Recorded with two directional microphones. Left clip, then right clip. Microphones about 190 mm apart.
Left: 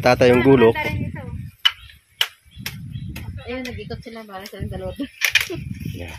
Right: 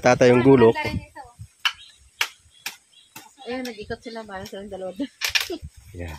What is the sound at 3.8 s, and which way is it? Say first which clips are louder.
Speech: right 1 dB; 40° left (ahead or behind).